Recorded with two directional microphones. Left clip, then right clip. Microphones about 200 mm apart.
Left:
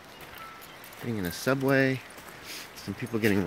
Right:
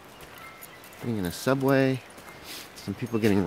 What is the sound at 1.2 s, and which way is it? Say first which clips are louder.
Speech: right 2 dB; 15° right (ahead or behind).